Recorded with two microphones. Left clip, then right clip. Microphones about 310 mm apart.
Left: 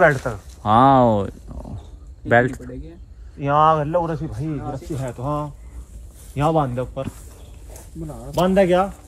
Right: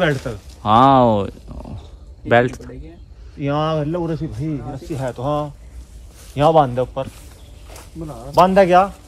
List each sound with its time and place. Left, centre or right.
0.0 s speech: centre
3.3 s speech: centre
4.9 s a man's voice: right
8.4 s a man's voice: right